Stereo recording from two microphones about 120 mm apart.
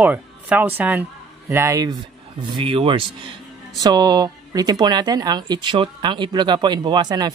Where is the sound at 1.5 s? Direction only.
25° right (ahead or behind); by 3.4 s 45° right (ahead or behind).